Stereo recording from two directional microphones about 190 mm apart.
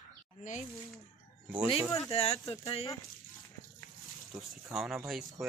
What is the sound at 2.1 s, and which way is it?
Speech, 30° left (ahead or behind).